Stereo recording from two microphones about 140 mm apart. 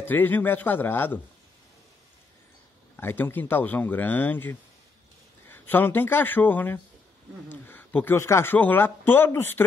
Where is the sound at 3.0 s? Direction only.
15° left (ahead or behind).